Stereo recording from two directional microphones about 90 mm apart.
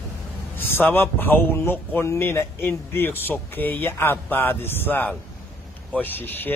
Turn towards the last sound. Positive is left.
turn(degrees=20)  # may be behind; listen again after turning